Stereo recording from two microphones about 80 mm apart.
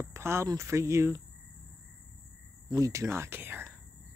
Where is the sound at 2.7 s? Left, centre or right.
Right.